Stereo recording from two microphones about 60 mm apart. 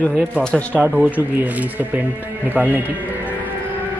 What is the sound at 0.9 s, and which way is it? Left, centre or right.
Speech, right.